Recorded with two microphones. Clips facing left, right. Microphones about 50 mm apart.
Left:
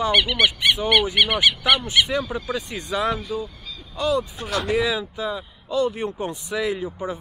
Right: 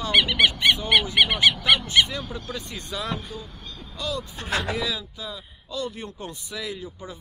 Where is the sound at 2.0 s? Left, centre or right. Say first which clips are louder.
Left 8 dB; left.